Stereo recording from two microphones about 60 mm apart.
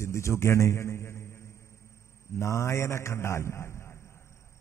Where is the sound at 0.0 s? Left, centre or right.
Left.